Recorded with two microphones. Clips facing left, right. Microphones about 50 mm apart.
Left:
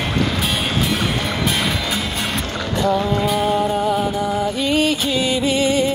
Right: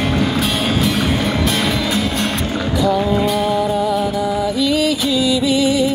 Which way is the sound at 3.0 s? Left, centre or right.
Centre.